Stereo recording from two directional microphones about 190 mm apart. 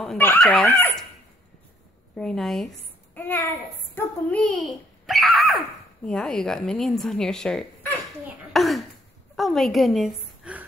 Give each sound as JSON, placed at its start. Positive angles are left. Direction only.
{"t": 0.0, "sound": "speech", "side_deg": 10}
{"t": 2.1, "sound": "speech", "side_deg": 5}
{"t": 3.2, "sound": "a sound", "side_deg": 10}
{"t": 3.9, "sound": "child singing", "side_deg": 10}
{"t": 5.0, "sound": "speech", "side_deg": 0}
{"t": 8.5, "sound": "a sound", "side_deg": 0}
{"t": 9.4, "sound": "a woman's voice", "side_deg": 0}